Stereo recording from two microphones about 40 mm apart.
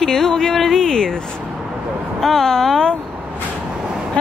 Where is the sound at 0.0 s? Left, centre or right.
Centre.